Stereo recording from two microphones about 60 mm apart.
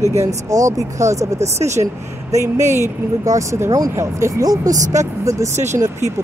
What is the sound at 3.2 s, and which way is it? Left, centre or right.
Speech, right.